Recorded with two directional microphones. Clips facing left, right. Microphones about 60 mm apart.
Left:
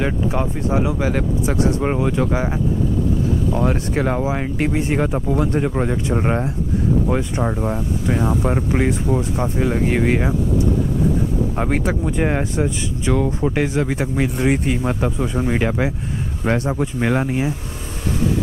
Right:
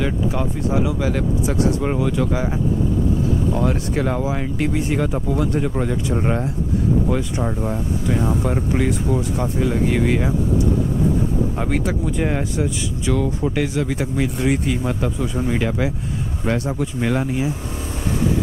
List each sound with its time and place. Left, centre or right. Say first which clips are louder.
0.0 s speech: left 1 dB; left
3.5 s speech: left 1 dB; left
11.5 s speech: left 2 dB; left